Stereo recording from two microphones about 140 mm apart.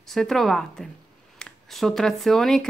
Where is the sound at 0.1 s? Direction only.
Centre (ahead or behind).